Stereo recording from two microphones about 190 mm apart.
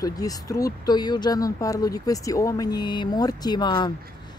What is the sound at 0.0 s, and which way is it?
Speech, 20° left (ahead or behind).